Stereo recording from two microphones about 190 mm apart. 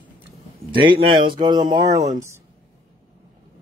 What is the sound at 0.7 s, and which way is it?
Speech, 25° right (ahead or behind).